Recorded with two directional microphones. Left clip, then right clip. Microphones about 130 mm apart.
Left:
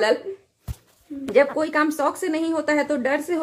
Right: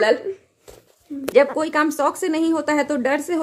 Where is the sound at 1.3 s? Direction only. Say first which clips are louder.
Right 2 dB; 15° right (ahead or behind).